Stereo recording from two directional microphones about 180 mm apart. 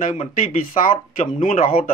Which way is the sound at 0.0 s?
50° left (ahead or behind).